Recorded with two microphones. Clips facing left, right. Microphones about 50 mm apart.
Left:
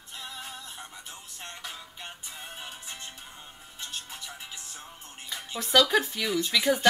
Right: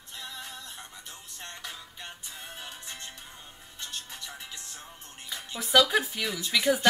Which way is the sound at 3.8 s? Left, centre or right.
Centre.